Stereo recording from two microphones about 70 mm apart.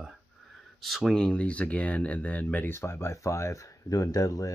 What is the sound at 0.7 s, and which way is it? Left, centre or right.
Speech, centre.